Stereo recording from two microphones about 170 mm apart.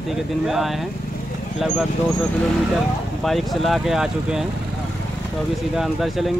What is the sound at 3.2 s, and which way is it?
Speech, centre (ahead or behind).